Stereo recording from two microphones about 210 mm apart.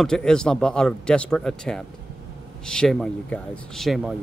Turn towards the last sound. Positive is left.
turn(degrees=0)  # may be behind; listen again after turning